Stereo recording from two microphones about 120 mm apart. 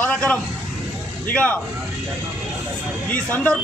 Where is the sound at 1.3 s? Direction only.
10° left (ahead or behind).